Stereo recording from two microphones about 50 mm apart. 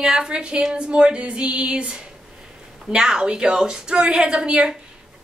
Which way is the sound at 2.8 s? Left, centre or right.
Centre.